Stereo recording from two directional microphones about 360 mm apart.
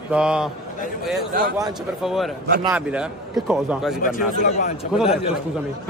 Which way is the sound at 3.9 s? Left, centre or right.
Left.